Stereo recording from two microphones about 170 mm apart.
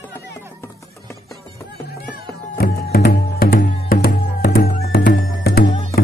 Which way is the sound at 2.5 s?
65° left (ahead or behind).